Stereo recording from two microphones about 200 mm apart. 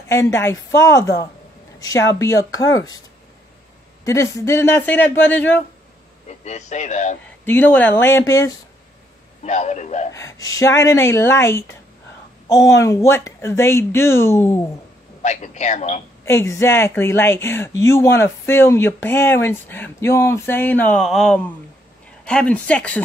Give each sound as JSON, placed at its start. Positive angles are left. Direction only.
{"t": 0.1, "sound": "speech", "side_deg": 15}
{"t": 4.0, "sound": "speech", "side_deg": 15}
{"t": 6.2, "sound": "speech", "side_deg": 35}
{"t": 7.4, "sound": "speech", "side_deg": 10}
{"t": 9.4, "sound": "speech", "side_deg": 35}
{"t": 10.1, "sound": "speech", "side_deg": 15}
{"t": 15.2, "sound": "speech", "side_deg": 35}
{"t": 16.3, "sound": "speech", "side_deg": 15}